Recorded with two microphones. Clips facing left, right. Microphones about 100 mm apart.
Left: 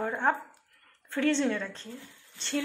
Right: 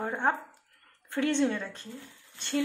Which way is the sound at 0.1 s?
20° right (ahead or behind).